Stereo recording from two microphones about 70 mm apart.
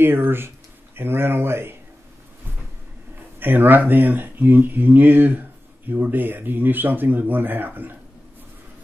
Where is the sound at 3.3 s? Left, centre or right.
Right.